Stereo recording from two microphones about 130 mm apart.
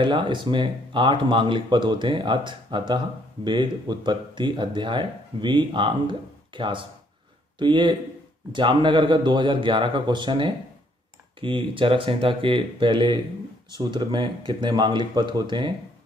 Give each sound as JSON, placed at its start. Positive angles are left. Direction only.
{"t": 0.0, "sound": "speech", "side_deg": -35}